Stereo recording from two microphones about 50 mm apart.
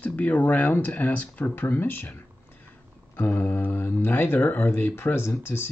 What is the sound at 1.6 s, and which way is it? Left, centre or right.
Speech, left.